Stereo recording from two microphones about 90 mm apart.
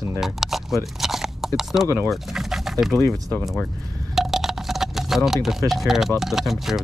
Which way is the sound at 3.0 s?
30° left (ahead or behind).